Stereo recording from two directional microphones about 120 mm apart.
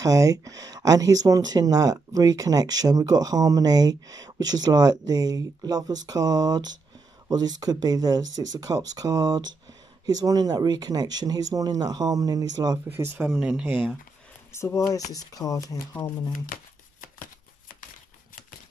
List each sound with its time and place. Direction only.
0.0 s speech: 30° right (ahead or behind)
12.9 s speech: 20° right (ahead or behind)
14.5 s speech: 25° left (ahead or behind)